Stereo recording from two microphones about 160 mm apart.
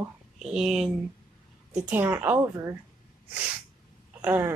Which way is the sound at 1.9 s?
10° right (ahead or behind).